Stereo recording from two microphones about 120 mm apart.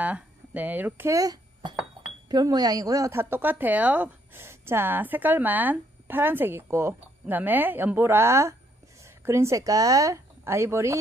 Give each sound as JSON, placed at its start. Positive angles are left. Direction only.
{"t": 0.0, "sound": "speech", "side_deg": -15}
{"t": 1.1, "sound": "speech", "side_deg": -30}